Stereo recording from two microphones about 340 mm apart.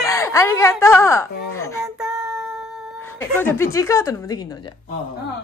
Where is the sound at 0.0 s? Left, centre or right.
Centre.